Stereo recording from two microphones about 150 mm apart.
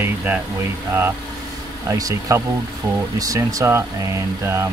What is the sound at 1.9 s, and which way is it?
Speech, 20° right (ahead or behind).